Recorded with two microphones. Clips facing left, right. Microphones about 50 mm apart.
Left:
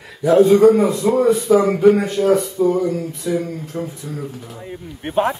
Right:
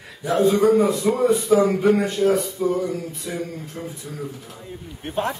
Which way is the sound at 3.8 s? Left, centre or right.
Left.